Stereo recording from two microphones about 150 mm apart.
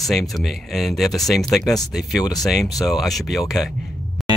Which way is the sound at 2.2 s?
25° left (ahead or behind).